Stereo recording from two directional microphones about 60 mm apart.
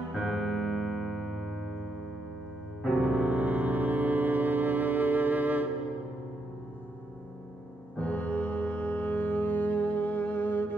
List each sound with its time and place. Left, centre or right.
0.1 s music: centre
3.0 s music: right
8.0 s music: left